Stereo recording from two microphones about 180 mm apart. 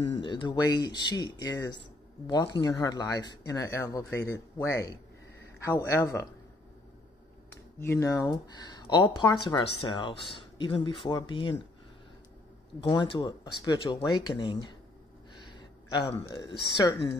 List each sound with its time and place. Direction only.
0.2 s speech: 25° left (ahead or behind)
7.8 s speech: 15° left (ahead or behind)
12.8 s speech: 25° left (ahead or behind)